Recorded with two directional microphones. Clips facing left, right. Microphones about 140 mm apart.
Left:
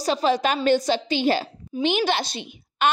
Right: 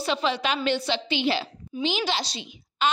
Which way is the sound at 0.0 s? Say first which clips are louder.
Left 5 dB; 40° left (ahead or behind).